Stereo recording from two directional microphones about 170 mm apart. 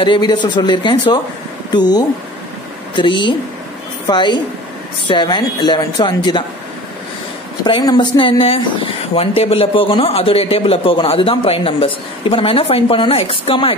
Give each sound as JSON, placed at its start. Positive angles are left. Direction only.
{"t": 0.0, "sound": "speech", "side_deg": 25}
{"t": 7.6, "sound": "a man's voice", "side_deg": 25}